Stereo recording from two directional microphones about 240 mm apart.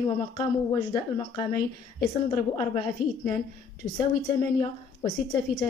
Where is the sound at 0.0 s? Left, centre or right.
Centre.